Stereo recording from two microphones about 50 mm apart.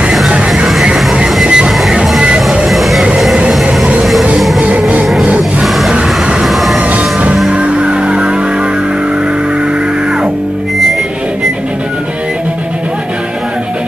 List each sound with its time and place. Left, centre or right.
1.4 s train: centre
1.7 s music: centre
2.0 s music: centre
2.6 s music: centre
4.6 s music: right
5.6 s music: centre
6.9 s music: right